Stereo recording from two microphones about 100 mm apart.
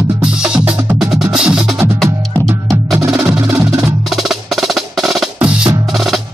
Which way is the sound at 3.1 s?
5° right (ahead or behind).